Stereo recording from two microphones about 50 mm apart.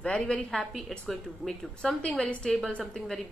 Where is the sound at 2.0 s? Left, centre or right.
Centre.